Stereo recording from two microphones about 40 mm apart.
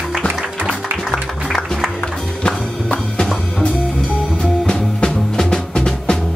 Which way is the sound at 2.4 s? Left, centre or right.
Left.